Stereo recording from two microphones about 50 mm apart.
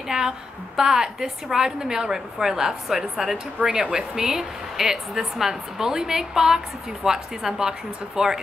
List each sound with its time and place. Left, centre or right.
0.1 s a sound: right
0.7 s speech: centre
3.5 s speech: right
3.8 s speech: centre